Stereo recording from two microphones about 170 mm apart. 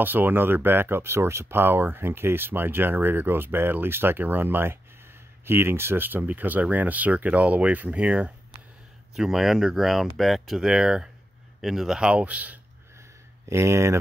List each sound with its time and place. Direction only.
0.0 s speech: 10° right (ahead or behind)